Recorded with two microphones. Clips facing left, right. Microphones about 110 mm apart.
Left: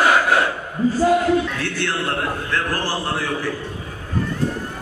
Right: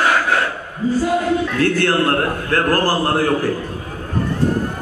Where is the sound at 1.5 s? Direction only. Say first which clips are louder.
Right 8 dB; 45° right (ahead or behind).